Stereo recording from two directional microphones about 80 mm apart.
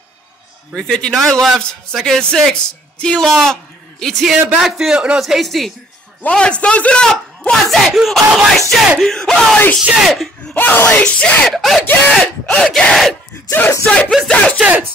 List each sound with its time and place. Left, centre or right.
0.7 s yell: centre
4.6 s a man's voice: centre
5.2 s yell: centre
6.2 s a man's voice: centre
7.7 s yell: centre
10.5 s speech: left
11.4 s yell: centre
12.1 s a man's voice: centre
12.6 s yell: centre
13.5 s a man's voice: left
14.6 s a sound: right